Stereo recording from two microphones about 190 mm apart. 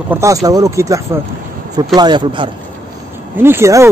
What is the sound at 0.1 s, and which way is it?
Speech, 15° right (ahead or behind).